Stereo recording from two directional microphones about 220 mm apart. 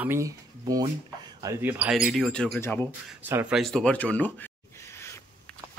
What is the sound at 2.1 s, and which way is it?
Speech, centre (ahead or behind).